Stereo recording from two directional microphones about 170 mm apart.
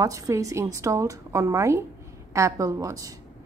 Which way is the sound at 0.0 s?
20° right (ahead or behind).